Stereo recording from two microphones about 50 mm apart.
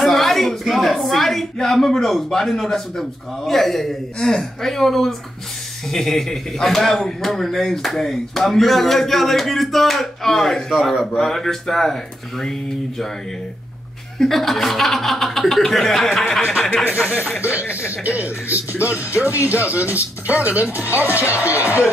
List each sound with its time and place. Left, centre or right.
0.0 s a sound: centre
1.0 s speech: centre
10.7 s speech: centre
14.2 s speech: centre
17.4 s speech: right
21.6 s speech: left